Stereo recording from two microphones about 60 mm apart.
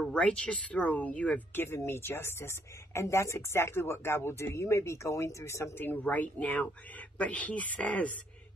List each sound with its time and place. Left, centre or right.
0.1 s speech: centre
1.5 s speech: left
5.8 s speech: left